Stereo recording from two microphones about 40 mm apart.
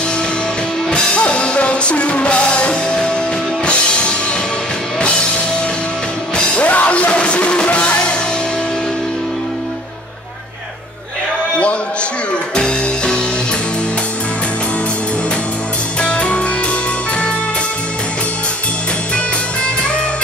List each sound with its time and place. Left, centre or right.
0.8 s music: left
6.3 s music: left
12.5 s music: left
16.0 s music: left